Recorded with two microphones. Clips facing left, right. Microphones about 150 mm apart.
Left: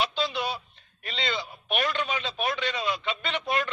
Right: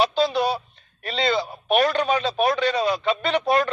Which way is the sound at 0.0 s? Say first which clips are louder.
Right 8 dB; 40° right (ahead or behind).